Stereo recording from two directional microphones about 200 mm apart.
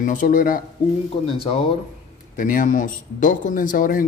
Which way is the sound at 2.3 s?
40° left (ahead or behind).